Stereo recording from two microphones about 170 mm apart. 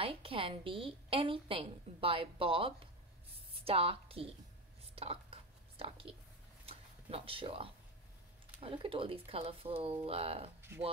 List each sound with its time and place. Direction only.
0.0 s a woman's voice: 30° right (ahead or behind)
4.8 s whispering: 35° right (ahead or behind)
6.6 s a sound: 35° right (ahead or behind)
8.5 s a woman's voice: 35° right (ahead or behind)